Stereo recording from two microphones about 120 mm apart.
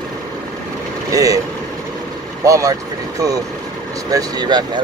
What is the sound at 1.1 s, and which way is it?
Speech, 30° right (ahead or behind).